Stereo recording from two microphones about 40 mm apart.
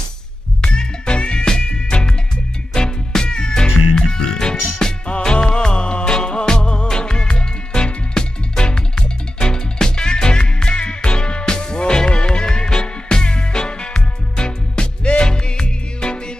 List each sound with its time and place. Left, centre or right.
0.6 s music: centre